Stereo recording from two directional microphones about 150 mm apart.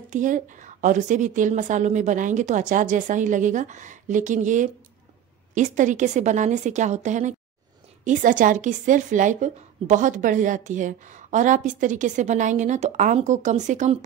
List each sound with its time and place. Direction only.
0.1 s a woman's voice: 55° right (ahead or behind)